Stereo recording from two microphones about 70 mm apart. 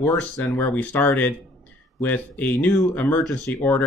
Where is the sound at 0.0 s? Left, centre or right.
Left.